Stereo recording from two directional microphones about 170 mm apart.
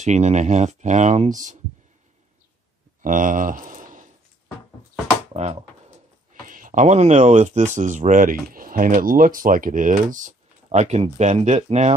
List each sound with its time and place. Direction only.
0.0 s speech: 40° right (ahead or behind)
3.0 s speech: 50° right (ahead or behind)
5.3 s a sound: 40° right (ahead or behind)
6.4 s speech: 55° right (ahead or behind)